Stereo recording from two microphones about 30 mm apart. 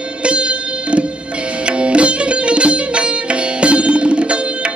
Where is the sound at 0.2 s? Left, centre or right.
Right.